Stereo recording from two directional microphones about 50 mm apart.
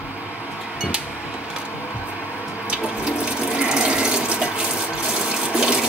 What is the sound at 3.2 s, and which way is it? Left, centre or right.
Water, centre.